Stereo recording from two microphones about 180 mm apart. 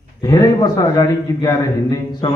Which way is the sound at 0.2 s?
20° left (ahead or behind).